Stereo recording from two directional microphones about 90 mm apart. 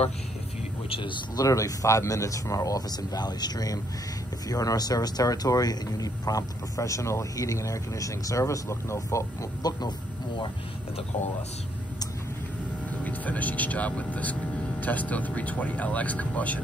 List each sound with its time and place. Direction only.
0.8 s speech: 90° left
1.3 s speech: 40° left (ahead or behind); by 10.5 s 60° left (ahead or behind)
13.0 s speech: 15° left (ahead or behind)